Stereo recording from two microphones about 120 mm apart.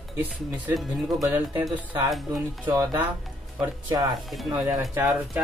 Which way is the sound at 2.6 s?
15° right (ahead or behind).